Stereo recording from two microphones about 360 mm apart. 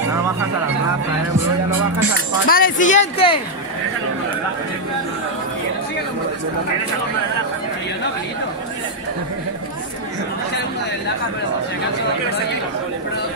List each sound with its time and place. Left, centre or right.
2.4 s speech: left